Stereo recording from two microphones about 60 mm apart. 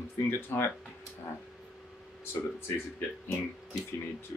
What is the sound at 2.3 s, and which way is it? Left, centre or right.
Speech, left.